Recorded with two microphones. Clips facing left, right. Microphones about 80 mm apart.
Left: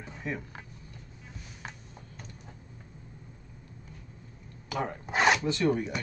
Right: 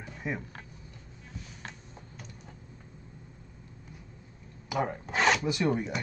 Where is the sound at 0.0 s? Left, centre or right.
Centre.